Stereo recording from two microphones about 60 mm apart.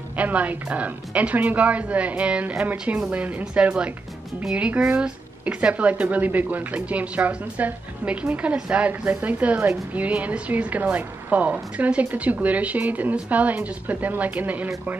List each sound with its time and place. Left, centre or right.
0.1 s speech: right